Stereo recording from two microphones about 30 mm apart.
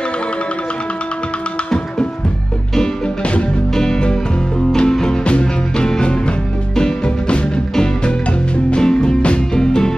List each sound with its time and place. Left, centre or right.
3.7 s music: centre
8.6 s music: left